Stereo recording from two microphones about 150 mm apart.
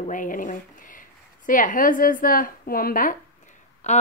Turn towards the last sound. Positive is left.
turn(degrees=50)  # may be behind; listen again after turning